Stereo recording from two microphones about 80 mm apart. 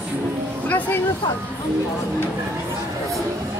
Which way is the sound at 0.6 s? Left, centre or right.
Left.